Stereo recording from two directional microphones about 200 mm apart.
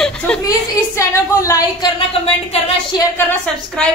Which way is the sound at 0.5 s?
15° left (ahead or behind).